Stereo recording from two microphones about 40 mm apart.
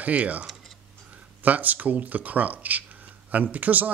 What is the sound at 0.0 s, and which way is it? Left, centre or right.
Speech, right.